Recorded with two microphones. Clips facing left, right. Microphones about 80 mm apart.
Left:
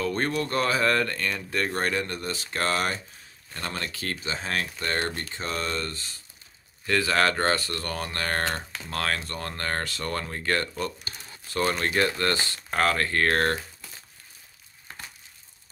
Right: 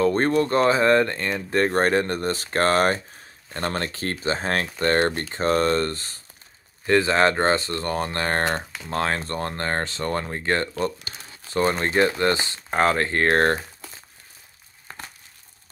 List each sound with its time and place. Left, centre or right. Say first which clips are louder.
0.0 s speech: right 7 dB; right
6.9 s speech: right 5 dB; right